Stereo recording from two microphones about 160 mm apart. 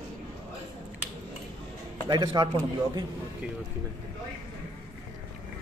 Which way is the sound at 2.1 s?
25° right (ahead or behind).